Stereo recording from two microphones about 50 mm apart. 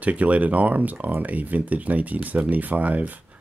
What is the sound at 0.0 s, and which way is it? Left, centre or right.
Speech, right.